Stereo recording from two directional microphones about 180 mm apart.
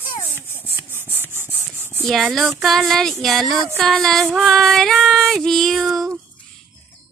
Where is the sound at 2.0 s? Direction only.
Centre (ahead or behind).